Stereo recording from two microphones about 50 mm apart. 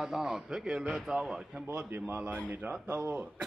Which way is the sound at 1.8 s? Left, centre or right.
Right.